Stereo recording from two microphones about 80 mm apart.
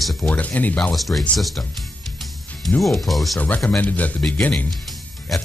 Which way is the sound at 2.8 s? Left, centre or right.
Centre.